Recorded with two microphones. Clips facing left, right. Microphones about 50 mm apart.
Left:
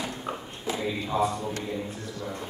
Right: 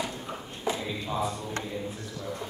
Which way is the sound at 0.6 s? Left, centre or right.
Centre.